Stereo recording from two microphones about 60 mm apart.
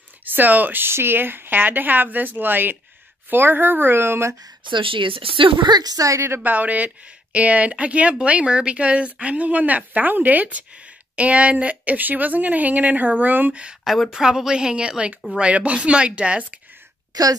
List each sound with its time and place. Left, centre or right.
0.2 s speech: right
5.9 s speech: right
6.4 s speech: right
13.8 s speech: centre
14.1 s a woman's voice: centre
17.1 s speech: right